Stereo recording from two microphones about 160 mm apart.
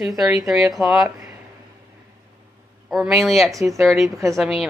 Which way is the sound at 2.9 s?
Centre (ahead or behind).